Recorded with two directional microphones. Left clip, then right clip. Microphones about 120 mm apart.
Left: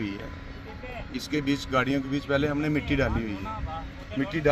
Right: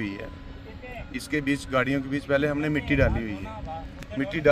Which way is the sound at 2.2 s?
20° right (ahead or behind).